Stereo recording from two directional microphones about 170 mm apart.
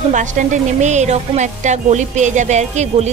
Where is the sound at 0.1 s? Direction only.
45° right (ahead or behind).